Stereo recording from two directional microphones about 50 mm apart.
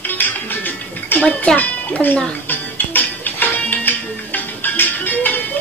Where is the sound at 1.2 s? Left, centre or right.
Left.